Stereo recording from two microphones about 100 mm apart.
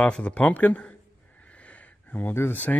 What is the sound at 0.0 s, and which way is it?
Speech, 10° left (ahead or behind).